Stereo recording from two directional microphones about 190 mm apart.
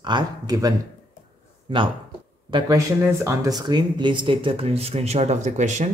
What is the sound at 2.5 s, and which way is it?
Speech, 20° right (ahead or behind).